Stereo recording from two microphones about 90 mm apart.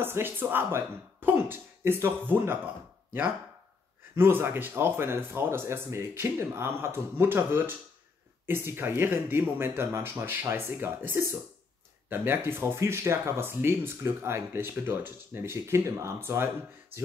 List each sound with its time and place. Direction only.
0.0 s speech: 25° right (ahead or behind)
4.1 s speech: 25° right (ahead or behind)
12.4 s speech: 25° right (ahead or behind)